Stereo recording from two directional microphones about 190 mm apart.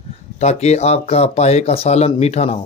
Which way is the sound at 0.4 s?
35° left (ahead or behind).